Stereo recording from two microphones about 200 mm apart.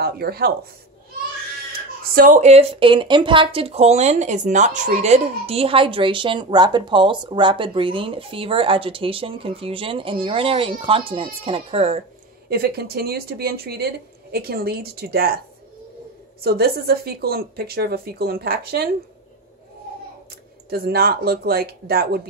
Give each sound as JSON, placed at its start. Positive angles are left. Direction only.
{"t": 0.0, "sound": "speech", "side_deg": -50}
{"t": 2.1, "sound": "speech", "side_deg": -40}
{"t": 12.4, "sound": "speech", "side_deg": -50}
{"t": 16.4, "sound": "speech", "side_deg": -50}
{"t": 20.2, "sound": "speech", "side_deg": -50}